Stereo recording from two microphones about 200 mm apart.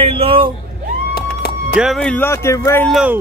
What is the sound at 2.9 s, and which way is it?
Speech, 5° right (ahead or behind).